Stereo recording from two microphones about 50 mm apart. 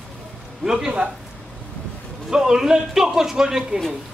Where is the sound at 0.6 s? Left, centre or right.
Centre.